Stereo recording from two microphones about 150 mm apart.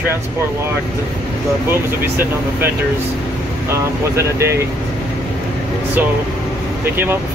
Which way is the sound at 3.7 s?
20° right (ahead or behind).